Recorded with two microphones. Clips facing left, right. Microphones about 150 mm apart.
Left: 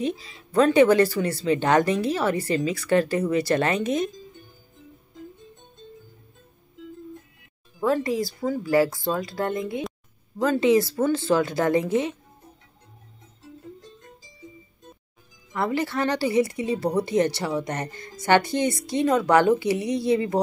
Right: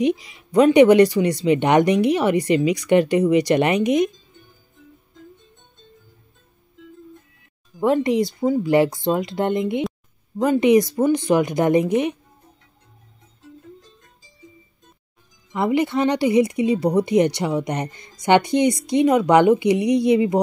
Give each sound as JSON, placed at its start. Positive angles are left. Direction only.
{"t": 0.0, "sound": "speech", "side_deg": -15}
{"t": 7.8, "sound": "speech", "side_deg": -20}
{"t": 15.5, "sound": "speech", "side_deg": -20}